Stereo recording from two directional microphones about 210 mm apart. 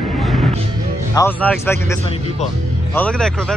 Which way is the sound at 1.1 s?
10° left (ahead or behind).